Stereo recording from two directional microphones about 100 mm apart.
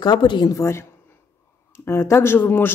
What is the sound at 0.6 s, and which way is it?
Speech, 25° left (ahead or behind).